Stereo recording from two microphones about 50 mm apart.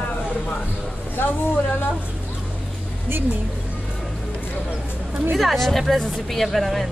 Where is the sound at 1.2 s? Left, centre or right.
Left.